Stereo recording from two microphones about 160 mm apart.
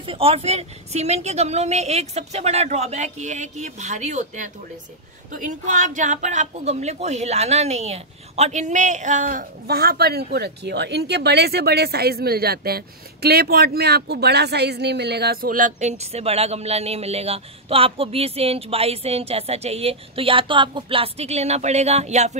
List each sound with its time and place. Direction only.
0.0 s a woman's voice: 35° right (ahead or behind)